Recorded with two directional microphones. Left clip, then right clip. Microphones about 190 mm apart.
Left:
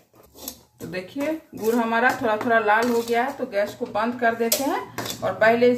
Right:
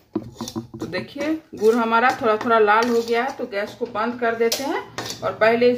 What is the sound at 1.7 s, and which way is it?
Speech, 25° right (ahead or behind).